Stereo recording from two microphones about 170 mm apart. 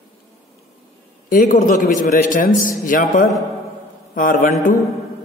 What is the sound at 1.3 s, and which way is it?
A man's voice, 50° left (ahead or behind).